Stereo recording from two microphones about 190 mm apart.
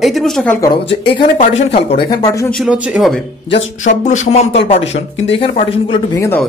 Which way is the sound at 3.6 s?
40° left (ahead or behind).